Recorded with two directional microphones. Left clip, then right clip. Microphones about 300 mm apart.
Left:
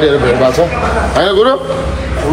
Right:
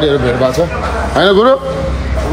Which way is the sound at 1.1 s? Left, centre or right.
Right.